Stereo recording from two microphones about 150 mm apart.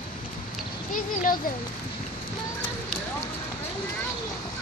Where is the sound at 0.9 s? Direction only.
65° left (ahead or behind).